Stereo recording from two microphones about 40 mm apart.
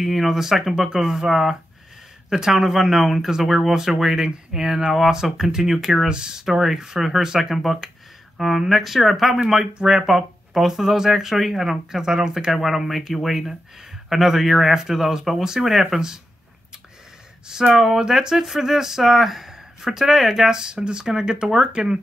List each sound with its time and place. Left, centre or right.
0.0 s speech: centre
1.3 s speech: centre
2.2 s speech: centre
6.4 s speech: centre
7.5 s speech: centre
12.5 s speech: centre
17.7 s speech: centre
18.0 s speech: centre